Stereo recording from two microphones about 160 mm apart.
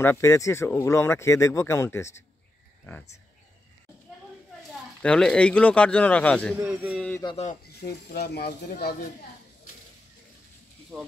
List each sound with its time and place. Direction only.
0.0 s speech: 15° left (ahead or behind)
5.0 s speech: 5° left (ahead or behind)
6.5 s speech: 10° right (ahead or behind)
7.2 s speech: 25° left (ahead or behind)
7.6 s speech: 75° left (ahead or behind)
10.9 s speech: 5° right (ahead or behind)